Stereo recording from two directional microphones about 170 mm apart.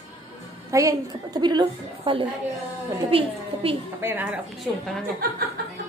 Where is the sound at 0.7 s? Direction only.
20° right (ahead or behind).